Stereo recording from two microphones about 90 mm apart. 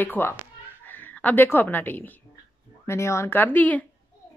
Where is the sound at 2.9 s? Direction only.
30° left (ahead or behind).